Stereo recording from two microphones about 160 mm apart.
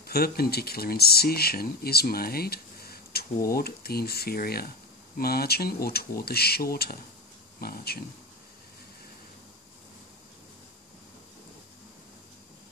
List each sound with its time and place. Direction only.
0.0 s speech: 75° left (ahead or behind)